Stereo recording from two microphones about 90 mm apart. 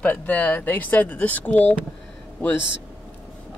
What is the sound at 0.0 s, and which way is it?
Speech, 15° left (ahead or behind).